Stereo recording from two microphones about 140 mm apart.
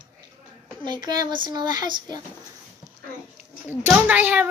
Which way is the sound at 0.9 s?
30° right (ahead or behind).